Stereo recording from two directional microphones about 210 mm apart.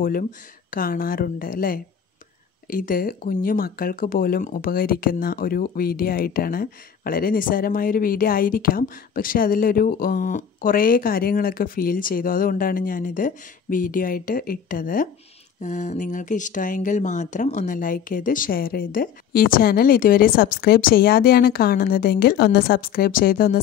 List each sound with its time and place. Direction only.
0.0 s speech: 40° left (ahead or behind)